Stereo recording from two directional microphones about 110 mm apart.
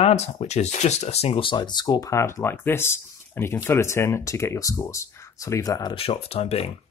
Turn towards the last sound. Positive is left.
turn(degrees=65)  # may be behind; listen again after turning